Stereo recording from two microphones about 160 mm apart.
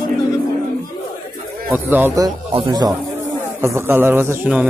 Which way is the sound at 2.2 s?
25° right (ahead or behind).